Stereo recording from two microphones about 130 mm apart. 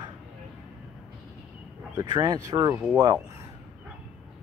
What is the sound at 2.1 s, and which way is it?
Speech, 30° right (ahead or behind).